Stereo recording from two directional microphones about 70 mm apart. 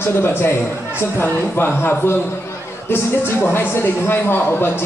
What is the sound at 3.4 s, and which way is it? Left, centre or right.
Speech, left.